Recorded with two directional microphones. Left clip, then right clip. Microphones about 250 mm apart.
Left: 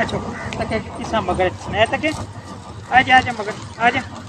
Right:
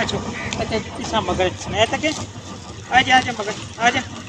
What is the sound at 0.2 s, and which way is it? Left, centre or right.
Speech, right.